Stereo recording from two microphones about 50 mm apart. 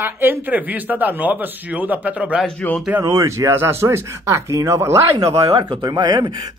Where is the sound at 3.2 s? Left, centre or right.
Right.